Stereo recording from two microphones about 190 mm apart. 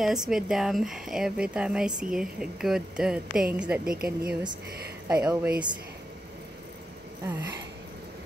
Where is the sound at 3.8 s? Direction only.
50° right (ahead or behind).